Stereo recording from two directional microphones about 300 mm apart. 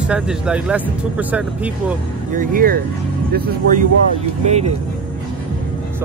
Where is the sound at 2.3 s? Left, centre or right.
Right.